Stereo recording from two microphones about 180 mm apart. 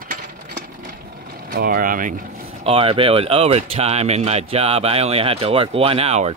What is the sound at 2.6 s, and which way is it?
Speech, 30° right (ahead or behind).